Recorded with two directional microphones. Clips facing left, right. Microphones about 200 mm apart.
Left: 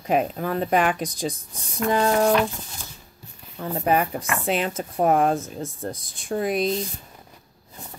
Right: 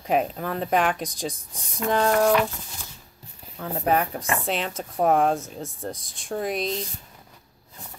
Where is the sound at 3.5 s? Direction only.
Centre (ahead or behind).